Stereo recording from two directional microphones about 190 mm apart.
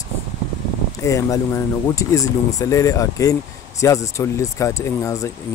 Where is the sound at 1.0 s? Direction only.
15° left (ahead or behind).